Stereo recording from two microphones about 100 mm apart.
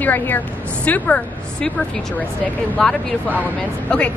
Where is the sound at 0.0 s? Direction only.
20° left (ahead or behind).